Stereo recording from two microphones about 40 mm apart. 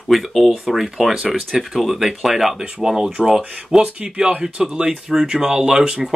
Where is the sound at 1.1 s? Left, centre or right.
Right.